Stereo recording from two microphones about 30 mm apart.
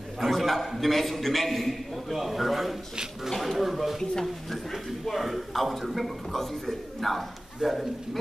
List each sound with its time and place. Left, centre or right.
0.2 s a man's voice: centre
3.3 s speech: centre
3.5 s speech: centre
5.0 s a man's voice: centre